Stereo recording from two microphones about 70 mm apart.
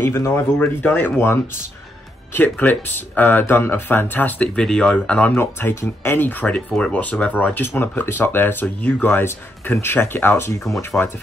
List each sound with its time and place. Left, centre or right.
0.4 s speech: left
4.6 s speech: centre
5.3 s speech: left